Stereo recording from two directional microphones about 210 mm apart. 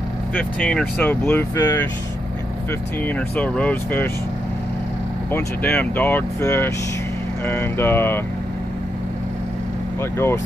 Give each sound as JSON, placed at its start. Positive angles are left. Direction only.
{"t": 0.3, "sound": "speech", "side_deg": 5}
{"t": 3.3, "sound": "speech", "side_deg": 5}
{"t": 5.3, "sound": "speech", "side_deg": 10}
{"t": 10.1, "sound": "speech", "side_deg": 10}